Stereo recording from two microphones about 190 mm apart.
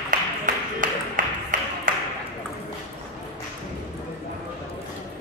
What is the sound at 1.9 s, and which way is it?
Ping, 45° right (ahead or behind).